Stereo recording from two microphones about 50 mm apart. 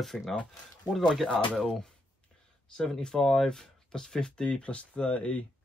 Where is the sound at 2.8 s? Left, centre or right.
Centre.